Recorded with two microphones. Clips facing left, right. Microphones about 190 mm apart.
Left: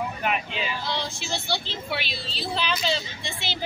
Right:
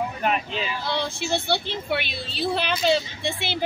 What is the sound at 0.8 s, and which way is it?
Speech, 60° right (ahead or behind).